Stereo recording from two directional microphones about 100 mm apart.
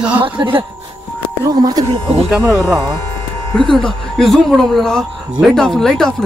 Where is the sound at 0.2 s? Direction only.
60° right (ahead or behind).